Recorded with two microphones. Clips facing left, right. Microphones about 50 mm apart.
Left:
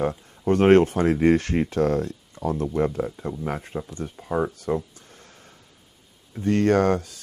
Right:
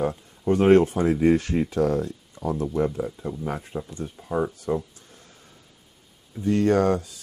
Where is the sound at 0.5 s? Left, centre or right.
Left.